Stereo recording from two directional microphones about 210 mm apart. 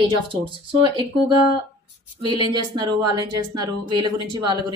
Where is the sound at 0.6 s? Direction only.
20° right (ahead or behind).